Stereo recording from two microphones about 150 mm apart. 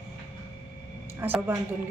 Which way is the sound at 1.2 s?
15° right (ahead or behind).